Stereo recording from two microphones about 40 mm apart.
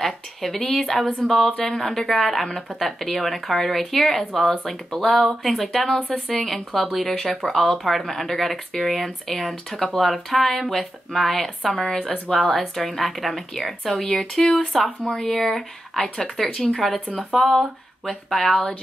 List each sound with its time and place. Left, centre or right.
0.0 s speech: centre
11.7 s speech: left
12.3 s speech: centre